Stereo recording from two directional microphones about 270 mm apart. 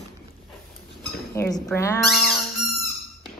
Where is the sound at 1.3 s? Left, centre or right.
Centre.